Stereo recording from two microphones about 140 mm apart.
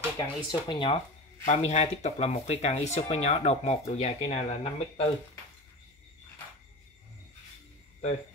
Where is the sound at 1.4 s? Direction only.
55° left (ahead or behind).